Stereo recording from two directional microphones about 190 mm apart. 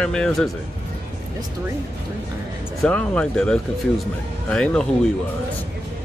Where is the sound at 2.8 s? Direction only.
5° left (ahead or behind).